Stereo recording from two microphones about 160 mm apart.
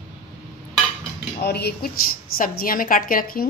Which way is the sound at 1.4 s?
90° left.